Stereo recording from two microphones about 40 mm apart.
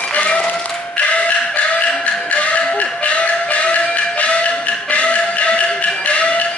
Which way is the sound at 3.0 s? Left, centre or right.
Left.